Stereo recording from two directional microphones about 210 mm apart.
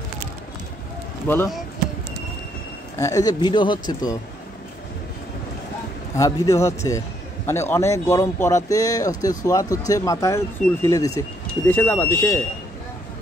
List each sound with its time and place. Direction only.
1.2 s speech: 10° left (ahead or behind)
3.0 s speech: 15° left (ahead or behind)
6.1 s speech: 15° left (ahead or behind)